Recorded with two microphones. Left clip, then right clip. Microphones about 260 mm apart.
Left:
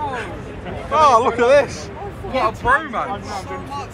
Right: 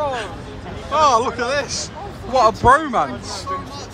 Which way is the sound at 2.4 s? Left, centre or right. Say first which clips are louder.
Right 4 dB; right.